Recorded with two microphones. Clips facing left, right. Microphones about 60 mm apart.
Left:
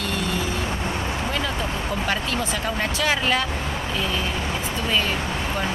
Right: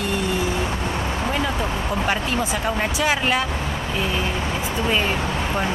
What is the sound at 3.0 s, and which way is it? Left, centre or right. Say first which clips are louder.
Speech: even; centre.